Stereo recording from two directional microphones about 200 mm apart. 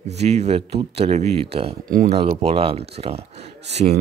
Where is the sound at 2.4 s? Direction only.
30° right (ahead or behind).